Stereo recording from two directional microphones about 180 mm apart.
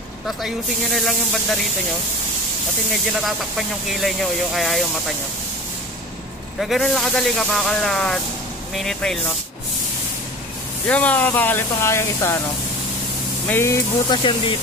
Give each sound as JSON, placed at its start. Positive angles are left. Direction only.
{"t": 0.9, "sound": "speech", "side_deg": 0}
{"t": 3.3, "sound": "speech", "side_deg": 0}
{"t": 6.6, "sound": "speech", "side_deg": 0}
{"t": 10.9, "sound": "speech", "side_deg": 10}
{"t": 13.5, "sound": "speech", "side_deg": 15}
{"t": 14.0, "sound": "speech", "side_deg": 25}